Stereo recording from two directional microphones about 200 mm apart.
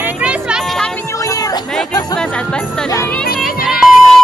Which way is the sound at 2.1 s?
5° left (ahead or behind).